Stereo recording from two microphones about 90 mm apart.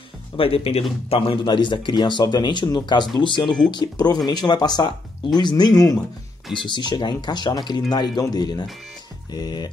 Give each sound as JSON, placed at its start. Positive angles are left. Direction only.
{"t": 0.4, "sound": "a man's voice", "side_deg": 90}
{"t": 3.4, "sound": "speech", "side_deg": 5}
{"t": 3.7, "sound": "speech", "side_deg": 50}
{"t": 6.5, "sound": "a man's voice", "side_deg": 60}